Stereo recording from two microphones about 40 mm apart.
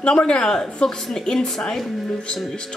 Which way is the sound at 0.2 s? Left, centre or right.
Left.